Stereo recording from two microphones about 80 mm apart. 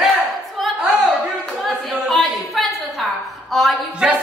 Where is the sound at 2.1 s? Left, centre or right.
Centre.